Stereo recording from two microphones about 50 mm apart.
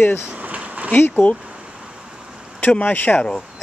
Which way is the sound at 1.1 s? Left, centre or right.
Left.